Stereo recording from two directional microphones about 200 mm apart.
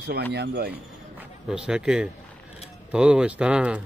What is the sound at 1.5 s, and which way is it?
A man's voice, 5° right (ahead or behind).